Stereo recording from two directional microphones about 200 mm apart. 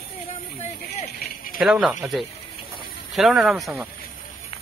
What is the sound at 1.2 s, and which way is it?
Rattle, 45° left (ahead or behind).